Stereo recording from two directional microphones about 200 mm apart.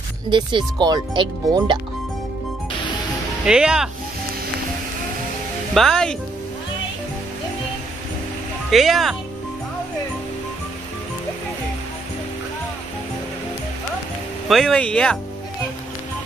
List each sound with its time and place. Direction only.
0.3 s speech: 25° right (ahead or behind)
3.4 s speech: 5° right (ahead or behind)
5.8 s speech: 5° left (ahead or behind)
8.6 s speech: centre (ahead or behind)
14.5 s speech: centre (ahead or behind)